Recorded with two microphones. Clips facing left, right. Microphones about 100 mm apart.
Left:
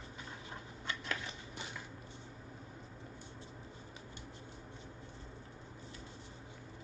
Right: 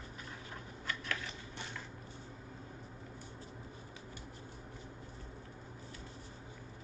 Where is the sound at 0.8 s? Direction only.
25° left (ahead or behind).